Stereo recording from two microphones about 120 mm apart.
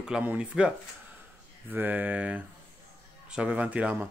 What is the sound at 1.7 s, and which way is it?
Speech, 15° right (ahead or behind).